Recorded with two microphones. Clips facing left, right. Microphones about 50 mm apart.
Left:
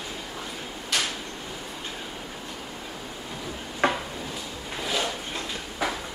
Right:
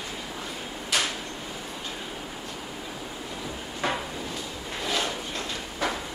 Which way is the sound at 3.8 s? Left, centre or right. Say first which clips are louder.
Left 4 dB; left.